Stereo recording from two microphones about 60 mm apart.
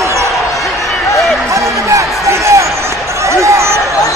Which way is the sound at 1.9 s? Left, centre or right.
Right.